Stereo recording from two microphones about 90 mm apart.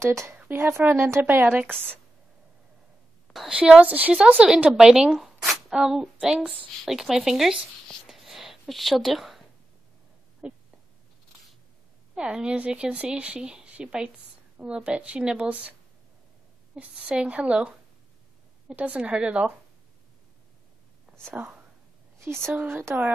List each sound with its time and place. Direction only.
0.0 s speech: 30° right (ahead or behind)
3.3 s a woman's voice: 10° right (ahead or behind)
10.4 s a sound: 10° right (ahead or behind)
12.2 s a woman's voice: 10° right (ahead or behind)
16.7 s a woman's voice: 15° right (ahead or behind)
21.4 s speech: 20° right (ahead or behind)